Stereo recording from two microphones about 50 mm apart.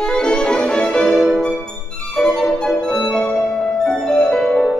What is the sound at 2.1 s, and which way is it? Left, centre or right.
Music, centre.